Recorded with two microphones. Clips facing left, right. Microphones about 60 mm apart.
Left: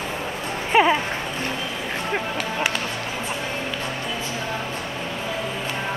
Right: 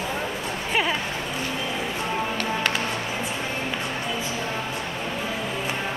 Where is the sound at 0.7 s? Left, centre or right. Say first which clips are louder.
Left 8 dB; left.